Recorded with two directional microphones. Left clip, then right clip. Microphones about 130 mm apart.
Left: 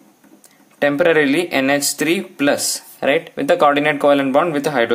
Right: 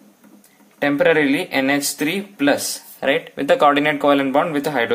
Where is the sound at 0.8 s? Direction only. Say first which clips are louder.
Left 2 dB; 40° left (ahead or behind).